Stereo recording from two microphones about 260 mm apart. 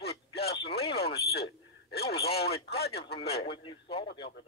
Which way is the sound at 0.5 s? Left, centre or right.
Left.